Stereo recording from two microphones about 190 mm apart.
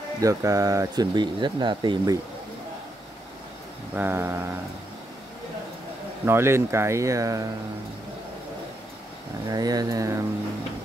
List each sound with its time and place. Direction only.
0.2 s speech: 15° right (ahead or behind)
3.9 s speech: 10° right (ahead or behind)
6.2 s speech: 15° right (ahead or behind)
9.5 s speech: 20° right (ahead or behind)